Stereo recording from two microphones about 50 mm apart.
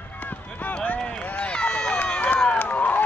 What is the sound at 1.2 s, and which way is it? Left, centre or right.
Run, left.